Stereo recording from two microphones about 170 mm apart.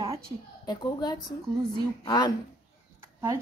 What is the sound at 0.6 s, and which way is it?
A woman's voice, 25° left (ahead or behind).